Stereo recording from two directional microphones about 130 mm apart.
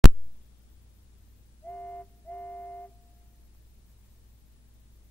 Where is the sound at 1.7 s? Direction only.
10° left (ahead or behind).